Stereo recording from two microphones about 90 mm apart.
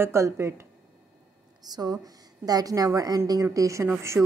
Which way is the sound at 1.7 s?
45° right (ahead or behind).